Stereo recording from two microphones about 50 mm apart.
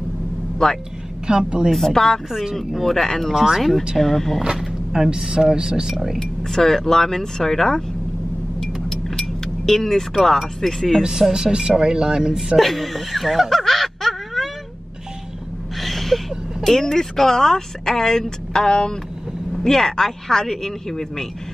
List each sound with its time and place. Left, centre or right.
0.6 s speech: centre
1.2 s speech: centre
1.7 s speech: centre
3.3 s speech: centre
4.4 s speech: centre
6.1 s speech: centre
8.5 s keys jangling: centre
11.0 s speech: centre
12.5 s a sound: centre
15.8 s gasp: centre
16.6 s speech: centre